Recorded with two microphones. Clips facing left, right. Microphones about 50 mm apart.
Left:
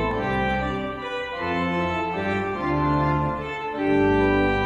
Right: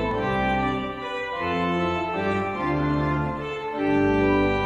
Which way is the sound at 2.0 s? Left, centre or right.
Left.